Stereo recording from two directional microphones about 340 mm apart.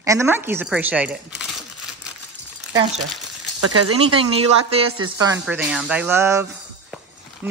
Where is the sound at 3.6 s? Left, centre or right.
Right.